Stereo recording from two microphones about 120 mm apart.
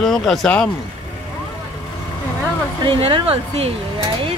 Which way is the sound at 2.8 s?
50° right (ahead or behind).